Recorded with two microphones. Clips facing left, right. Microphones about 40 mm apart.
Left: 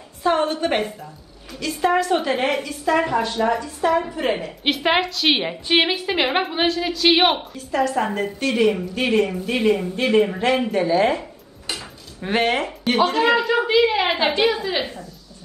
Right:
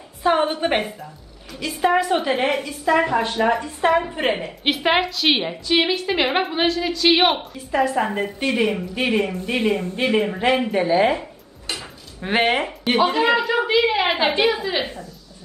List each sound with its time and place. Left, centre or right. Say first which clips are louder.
0.2 s a woman's voice: right 1 dB; centre
3.2 s a woman's voice: right 1 dB; right
4.3 s a woman's voice: even; centre
7.5 s a woman's voice: right 1 dB; centre
11.6 s dishes: even; centre
12.3 s a woman's voice: right 1 dB; centre